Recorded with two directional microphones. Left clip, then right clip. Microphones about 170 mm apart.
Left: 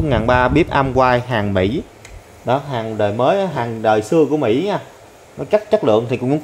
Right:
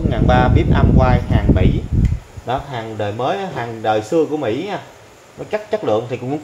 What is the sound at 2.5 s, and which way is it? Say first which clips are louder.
A man's voice: left 3 dB; 65° left (ahead or behind).